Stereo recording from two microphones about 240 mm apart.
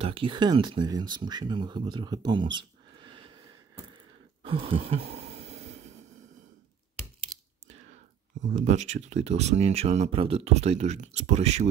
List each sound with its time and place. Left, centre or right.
0.0 s speech: right
4.5 s a sound: right
7.3 s computer keyboard: centre
7.9 s speech: right